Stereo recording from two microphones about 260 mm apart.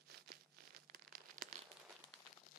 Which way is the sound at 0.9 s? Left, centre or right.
Right.